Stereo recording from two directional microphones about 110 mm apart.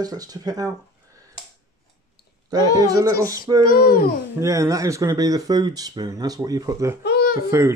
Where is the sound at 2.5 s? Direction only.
35° right (ahead or behind).